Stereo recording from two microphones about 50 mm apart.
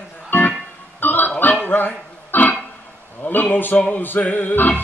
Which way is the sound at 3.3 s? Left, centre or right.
Left.